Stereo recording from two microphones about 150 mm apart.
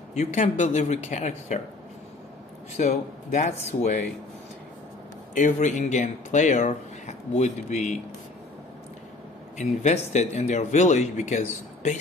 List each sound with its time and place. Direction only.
0.1 s speech: 50° left (ahead or behind)
2.7 s speech: 50° left (ahead or behind)
5.3 s speech: 55° left (ahead or behind)
9.6 s speech: 50° left (ahead or behind)